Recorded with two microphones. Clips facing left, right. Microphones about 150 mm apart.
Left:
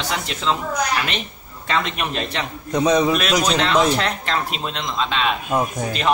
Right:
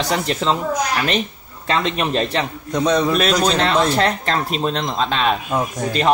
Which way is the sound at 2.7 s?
10° left (ahead or behind).